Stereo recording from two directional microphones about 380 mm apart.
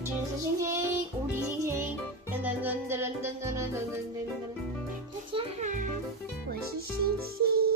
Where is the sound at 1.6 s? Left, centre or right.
Centre.